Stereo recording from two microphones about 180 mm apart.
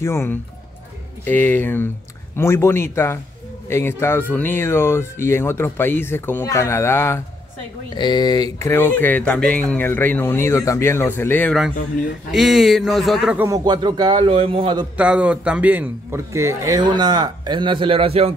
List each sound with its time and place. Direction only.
0.0 s speech: 15° left (ahead or behind)
12.3 s a man's voice: centre (ahead or behind)
13.4 s a man's voice: 20° right (ahead or behind)
15.0 s a man's voice: 5° right (ahead or behind); by 18.3 s 30° right (ahead or behind)